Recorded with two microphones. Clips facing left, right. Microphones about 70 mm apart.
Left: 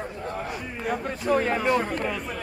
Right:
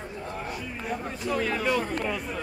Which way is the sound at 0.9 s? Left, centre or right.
Left.